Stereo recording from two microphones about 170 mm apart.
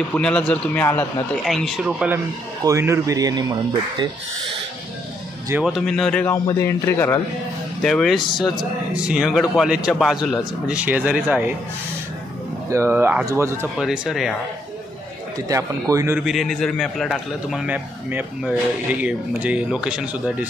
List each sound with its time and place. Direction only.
0.1 s a man's voice: 5° left (ahead or behind)
1.4 s a man's voice: centre (ahead or behind); by 3.5 s 20° right (ahead or behind)
5.5 s a man's voice: 5° right (ahead or behind)
6.3 s a man's voice: 20° left (ahead or behind)
7.8 s a man's voice: 5° left (ahead or behind)
12.6 s speech: 15° right (ahead or behind)
13.7 s a man's voice: 5° right (ahead or behind)
15.3 s speech: 20° right (ahead or behind)
16.2 s a man's voice: centre (ahead or behind)